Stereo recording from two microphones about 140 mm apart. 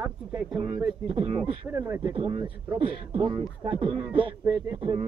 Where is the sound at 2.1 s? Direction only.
40° right (ahead or behind).